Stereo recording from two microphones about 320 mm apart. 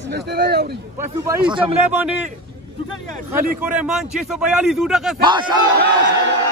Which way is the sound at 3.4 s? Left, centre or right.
Centre.